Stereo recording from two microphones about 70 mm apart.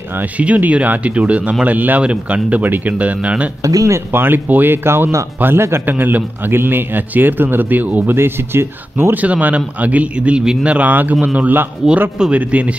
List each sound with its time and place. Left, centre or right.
0.1 s a man's voice: right
3.6 s speech: right
4.1 s a man's voice: right
9.1 s a man's voice: right
11.8 s a man's voice: centre
12.2 s a man's voice: centre